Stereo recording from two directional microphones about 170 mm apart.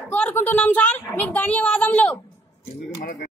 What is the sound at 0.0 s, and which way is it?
A woman's voice, 10° left (ahead or behind).